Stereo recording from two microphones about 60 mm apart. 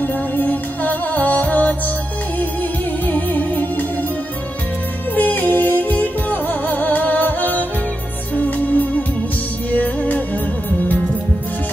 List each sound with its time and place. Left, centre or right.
0.0 s music: left
3.1 s music: left
5.1 s music: left